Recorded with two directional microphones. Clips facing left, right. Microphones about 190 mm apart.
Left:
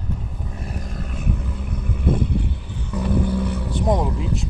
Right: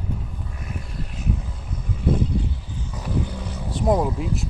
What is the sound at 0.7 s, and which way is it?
Vehicle, 45° left (ahead or behind).